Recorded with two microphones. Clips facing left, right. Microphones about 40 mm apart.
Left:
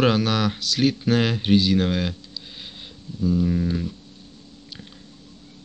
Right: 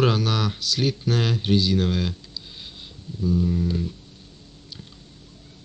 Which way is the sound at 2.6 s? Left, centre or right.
Left.